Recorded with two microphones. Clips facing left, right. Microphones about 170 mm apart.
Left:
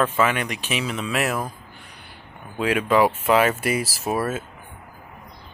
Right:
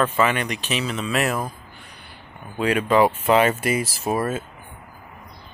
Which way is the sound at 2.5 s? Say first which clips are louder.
Right 1 dB; centre (ahead or behind).